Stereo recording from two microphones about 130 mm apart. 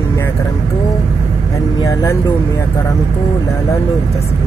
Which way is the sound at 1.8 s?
25° left (ahead or behind).